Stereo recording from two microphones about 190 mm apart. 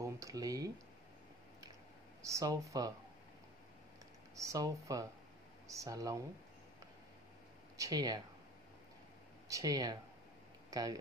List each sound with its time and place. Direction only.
0.0 s speech: 20° right (ahead or behind)
2.2 s speech: 15° right (ahead or behind)
4.4 s speech: 15° right (ahead or behind)
7.7 s speech: 20° right (ahead or behind)
9.5 s speech: 20° right (ahead or behind)